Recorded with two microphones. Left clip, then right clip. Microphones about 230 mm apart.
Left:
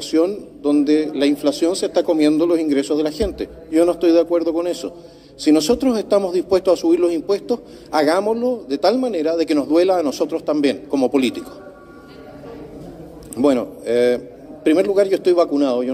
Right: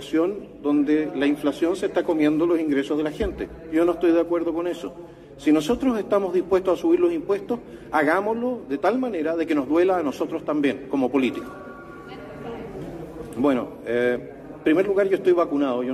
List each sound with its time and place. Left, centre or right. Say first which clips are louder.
0.1 s speech: left 5 dB; left
13.4 s speech: left 5 dB; left